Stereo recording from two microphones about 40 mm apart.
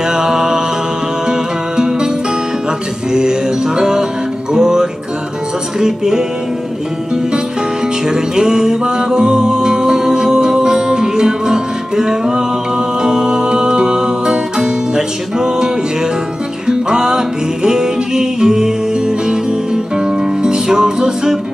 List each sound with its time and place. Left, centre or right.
0.1 s music: centre
1.8 s music: centre
3.1 s music: centre
8.1 s music: centre